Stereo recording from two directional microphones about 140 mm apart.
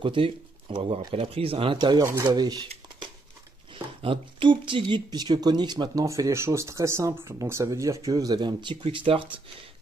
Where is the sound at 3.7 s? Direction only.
40° right (ahead or behind).